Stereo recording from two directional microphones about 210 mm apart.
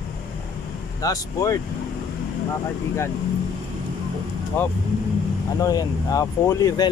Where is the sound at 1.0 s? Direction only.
15° left (ahead or behind).